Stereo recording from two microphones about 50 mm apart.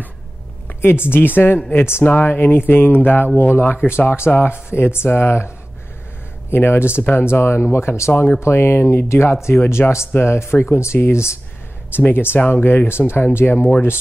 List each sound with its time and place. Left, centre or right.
0.7 s speech: left
6.5 s speech: left
8.1 s speech: left
8.4 s speech: left
11.1 s speech: left
12.1 s speech: left